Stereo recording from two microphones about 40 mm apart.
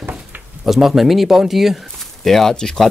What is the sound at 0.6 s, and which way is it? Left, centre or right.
Speech, centre.